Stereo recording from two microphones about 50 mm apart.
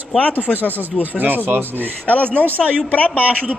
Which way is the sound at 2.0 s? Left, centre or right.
Left.